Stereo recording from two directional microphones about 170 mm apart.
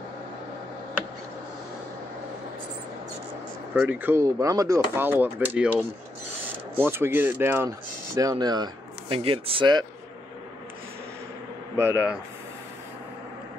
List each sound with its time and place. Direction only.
3.7 s speech: 10° right (ahead or behind); by 9.8 s 25° right (ahead or behind)
11.7 s speech: 15° right (ahead or behind)